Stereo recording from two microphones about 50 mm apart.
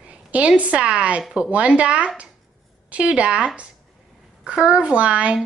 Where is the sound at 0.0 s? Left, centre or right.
Right.